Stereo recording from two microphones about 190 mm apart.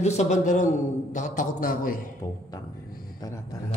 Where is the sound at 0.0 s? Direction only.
35° left (ahead or behind).